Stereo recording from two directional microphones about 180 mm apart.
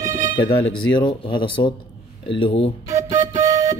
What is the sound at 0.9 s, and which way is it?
Speech, 25° left (ahead or behind).